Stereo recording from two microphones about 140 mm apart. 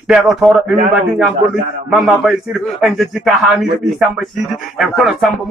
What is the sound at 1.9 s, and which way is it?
Speech, 5° right (ahead or behind).